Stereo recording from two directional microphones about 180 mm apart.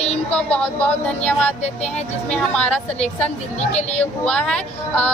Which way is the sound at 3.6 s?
35° left (ahead or behind).